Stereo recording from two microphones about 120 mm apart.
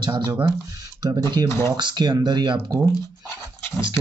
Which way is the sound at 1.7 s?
40° right (ahead or behind).